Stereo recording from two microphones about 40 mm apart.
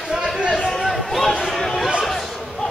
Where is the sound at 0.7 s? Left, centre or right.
Centre.